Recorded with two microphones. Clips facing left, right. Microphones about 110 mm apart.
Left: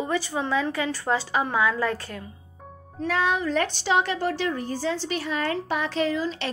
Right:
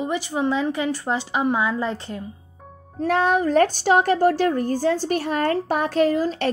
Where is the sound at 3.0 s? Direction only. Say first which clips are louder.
Right 5 dB; 45° right (ahead or behind).